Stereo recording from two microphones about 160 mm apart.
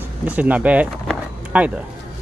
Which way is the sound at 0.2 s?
10° right (ahead or behind).